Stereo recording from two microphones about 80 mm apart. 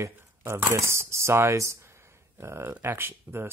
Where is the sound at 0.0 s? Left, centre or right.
Right.